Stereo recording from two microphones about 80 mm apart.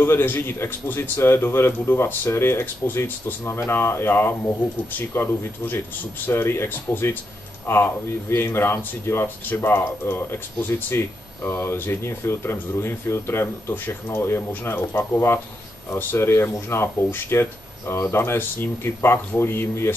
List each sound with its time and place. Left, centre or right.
0.0 s a man's voice: left